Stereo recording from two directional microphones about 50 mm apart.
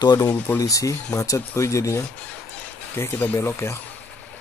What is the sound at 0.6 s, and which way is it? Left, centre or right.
Speech, left.